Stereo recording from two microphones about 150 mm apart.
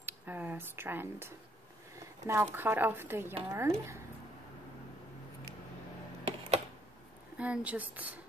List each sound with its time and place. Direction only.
0.0 s a sound: 10° right (ahead or behind)
2.4 s speech: 15° right (ahead or behind)
7.3 s speech: 10° right (ahead or behind)